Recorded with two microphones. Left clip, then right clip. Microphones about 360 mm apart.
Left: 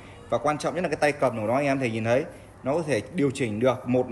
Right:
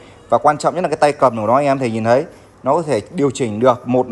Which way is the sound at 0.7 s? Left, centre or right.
Centre.